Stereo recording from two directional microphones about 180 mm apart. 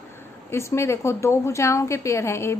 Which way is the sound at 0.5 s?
15° left (ahead or behind).